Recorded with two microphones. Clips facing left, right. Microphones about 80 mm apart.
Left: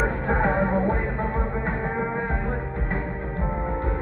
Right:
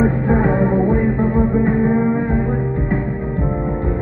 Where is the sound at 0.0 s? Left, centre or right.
Centre.